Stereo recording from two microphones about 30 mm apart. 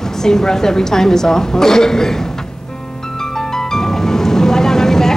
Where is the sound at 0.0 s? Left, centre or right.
Centre.